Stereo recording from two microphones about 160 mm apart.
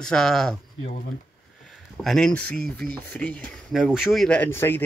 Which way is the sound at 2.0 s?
5° left (ahead or behind).